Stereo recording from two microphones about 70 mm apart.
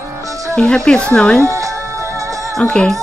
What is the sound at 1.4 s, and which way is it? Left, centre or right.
Music, right.